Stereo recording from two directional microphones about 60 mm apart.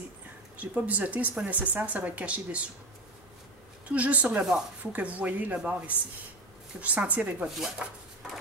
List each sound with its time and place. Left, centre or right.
0.6 s speech: right
3.9 s speech: right
7.4 s speech: centre